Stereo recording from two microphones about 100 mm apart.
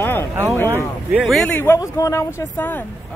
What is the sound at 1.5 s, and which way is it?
Speech, 20° left (ahead or behind).